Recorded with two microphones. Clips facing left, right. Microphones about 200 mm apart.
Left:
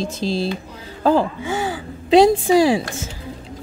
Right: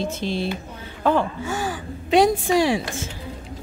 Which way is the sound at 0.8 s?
35° left (ahead or behind).